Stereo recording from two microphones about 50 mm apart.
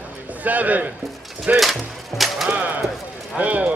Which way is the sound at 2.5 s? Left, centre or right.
Right.